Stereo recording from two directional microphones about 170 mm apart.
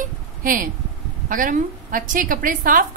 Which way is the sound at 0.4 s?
55° right (ahead or behind).